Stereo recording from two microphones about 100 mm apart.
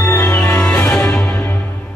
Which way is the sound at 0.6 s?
10° left (ahead or behind).